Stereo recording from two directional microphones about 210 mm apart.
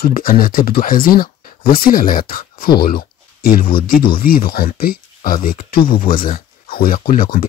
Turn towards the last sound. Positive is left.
turn(degrees=45)  # may be behind; listen again after turning